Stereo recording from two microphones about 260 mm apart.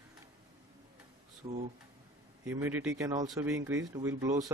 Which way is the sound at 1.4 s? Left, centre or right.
Centre.